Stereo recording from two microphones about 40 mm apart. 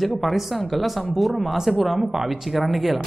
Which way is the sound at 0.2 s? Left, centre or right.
Centre.